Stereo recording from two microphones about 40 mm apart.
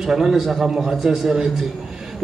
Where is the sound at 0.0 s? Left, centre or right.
Centre.